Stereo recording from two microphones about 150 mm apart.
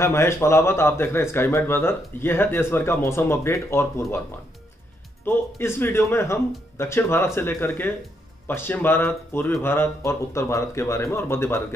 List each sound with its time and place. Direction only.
0.0 s speech: 20° left (ahead or behind)
5.2 s speech: 15° left (ahead or behind)